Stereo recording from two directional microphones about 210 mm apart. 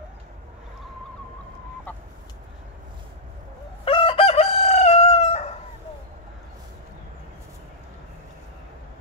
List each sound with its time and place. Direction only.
3.8 s chicken: 25° left (ahead or behind)